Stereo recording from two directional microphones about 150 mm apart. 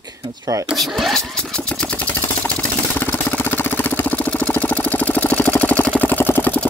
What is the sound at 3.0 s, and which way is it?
Vehicle, 10° left (ahead or behind).